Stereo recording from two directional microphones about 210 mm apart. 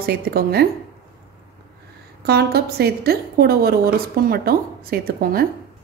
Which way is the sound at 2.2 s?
50° right (ahead or behind).